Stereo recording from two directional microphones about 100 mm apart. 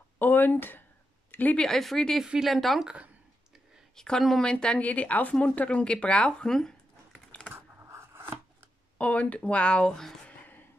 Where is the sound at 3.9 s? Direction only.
5° left (ahead or behind).